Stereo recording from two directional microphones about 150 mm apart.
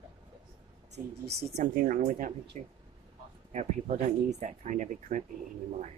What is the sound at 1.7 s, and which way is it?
Speech, 70° right (ahead or behind).